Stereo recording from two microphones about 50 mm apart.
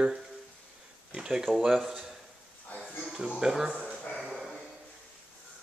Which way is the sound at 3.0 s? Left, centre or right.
Centre.